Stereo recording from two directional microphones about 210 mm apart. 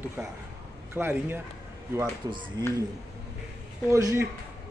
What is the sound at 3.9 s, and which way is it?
Speech, 15° right (ahead or behind).